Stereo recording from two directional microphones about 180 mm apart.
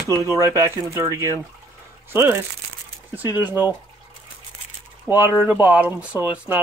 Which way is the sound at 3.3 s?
20° left (ahead or behind).